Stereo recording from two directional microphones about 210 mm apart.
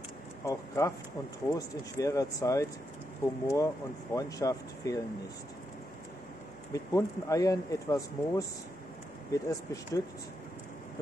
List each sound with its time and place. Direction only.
0.5 s speech: 15° left (ahead or behind)
6.7 s speech: 15° left (ahead or behind)